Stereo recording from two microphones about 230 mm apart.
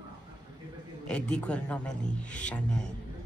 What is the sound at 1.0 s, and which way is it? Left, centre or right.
Speech, centre.